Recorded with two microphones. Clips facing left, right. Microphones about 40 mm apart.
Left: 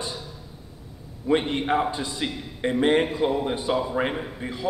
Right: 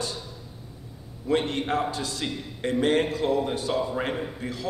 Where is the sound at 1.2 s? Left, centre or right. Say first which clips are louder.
Left 2 dB; centre.